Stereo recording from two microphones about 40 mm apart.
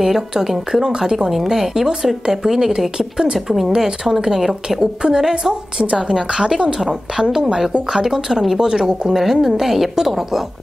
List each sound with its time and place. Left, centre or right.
0.0 s speech: centre
3.3 s speech: centre
3.7 s a woman's voice: centre